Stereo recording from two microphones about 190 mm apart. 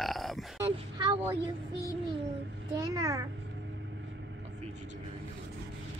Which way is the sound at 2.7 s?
20° right (ahead or behind).